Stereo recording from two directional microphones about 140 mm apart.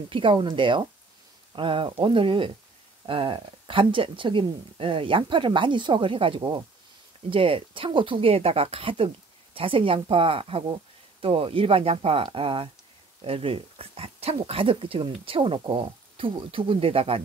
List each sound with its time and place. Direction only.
0.1 s speech: 40° right (ahead or behind)